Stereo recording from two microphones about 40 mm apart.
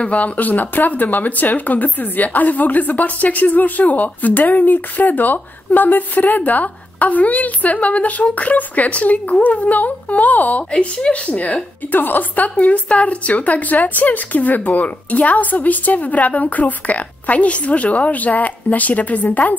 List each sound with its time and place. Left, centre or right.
0.0 s speech: left
11.9 s speech: left
12.5 s speech: left